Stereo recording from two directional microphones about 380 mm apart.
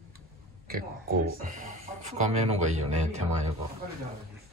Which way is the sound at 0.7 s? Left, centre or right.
Right.